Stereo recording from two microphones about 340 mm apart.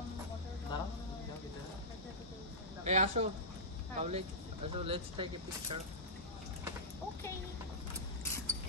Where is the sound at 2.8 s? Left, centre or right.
Centre.